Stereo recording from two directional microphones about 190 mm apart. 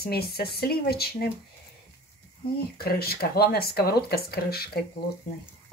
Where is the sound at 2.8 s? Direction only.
55° left (ahead or behind).